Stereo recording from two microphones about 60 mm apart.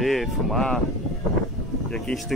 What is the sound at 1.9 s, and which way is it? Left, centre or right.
Speech, centre.